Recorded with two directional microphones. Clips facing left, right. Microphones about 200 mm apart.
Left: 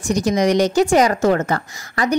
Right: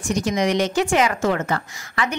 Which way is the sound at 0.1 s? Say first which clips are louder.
Left 4 dB; 40° left (ahead or behind).